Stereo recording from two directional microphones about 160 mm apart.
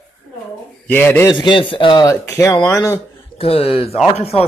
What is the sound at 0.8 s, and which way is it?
Speech, 10° left (ahead or behind).